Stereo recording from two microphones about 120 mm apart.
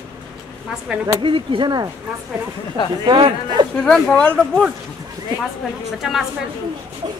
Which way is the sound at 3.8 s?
5° left (ahead or behind).